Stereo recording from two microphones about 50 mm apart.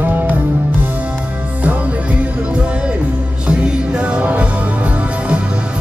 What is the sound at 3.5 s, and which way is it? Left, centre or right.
Music, centre.